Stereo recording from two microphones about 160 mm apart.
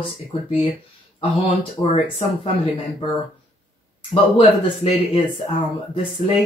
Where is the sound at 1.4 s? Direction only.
35° left (ahead or behind).